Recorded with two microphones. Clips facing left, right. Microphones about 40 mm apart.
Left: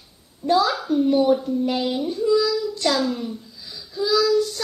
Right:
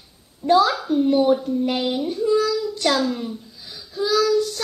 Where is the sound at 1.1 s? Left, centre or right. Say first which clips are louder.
Right 1 dB; right.